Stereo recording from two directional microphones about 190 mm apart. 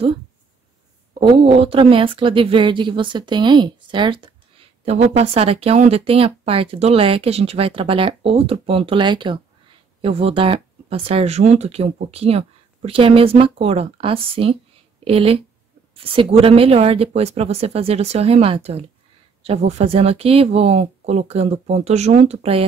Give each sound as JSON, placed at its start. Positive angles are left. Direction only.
{"t": 1.2, "sound": "a woman's voice", "side_deg": -30}